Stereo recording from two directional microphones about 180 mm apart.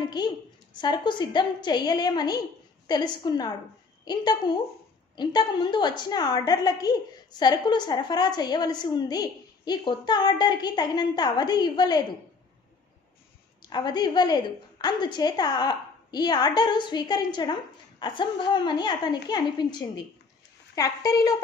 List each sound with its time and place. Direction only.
0.2 s a woman's voice: 25° left (ahead or behind)
13.6 s a woman's voice: 25° left (ahead or behind)